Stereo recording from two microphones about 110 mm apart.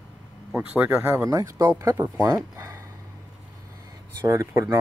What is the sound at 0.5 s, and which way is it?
Speech, 15° right (ahead or behind).